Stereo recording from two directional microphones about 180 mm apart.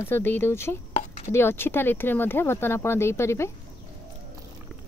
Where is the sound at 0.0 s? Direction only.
10° left (ahead or behind).